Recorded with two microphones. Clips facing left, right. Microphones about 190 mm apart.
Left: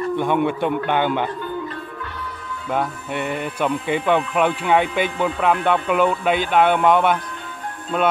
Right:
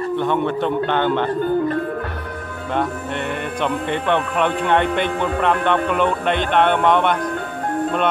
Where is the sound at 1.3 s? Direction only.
50° right (ahead or behind).